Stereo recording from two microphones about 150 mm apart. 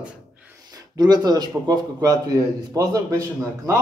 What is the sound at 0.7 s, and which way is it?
A man's voice, 25° right (ahead or behind).